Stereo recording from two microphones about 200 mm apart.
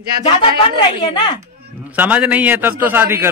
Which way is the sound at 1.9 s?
10° right (ahead or behind).